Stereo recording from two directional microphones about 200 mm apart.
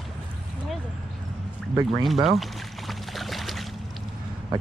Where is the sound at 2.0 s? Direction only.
Centre (ahead or behind).